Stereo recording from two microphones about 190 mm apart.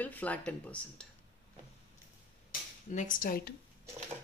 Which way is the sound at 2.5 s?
45° left (ahead or behind).